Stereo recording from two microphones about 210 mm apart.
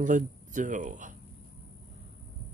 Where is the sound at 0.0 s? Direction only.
35° right (ahead or behind).